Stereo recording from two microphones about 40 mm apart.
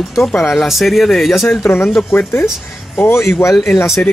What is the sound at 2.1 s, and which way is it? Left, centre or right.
Speech, left.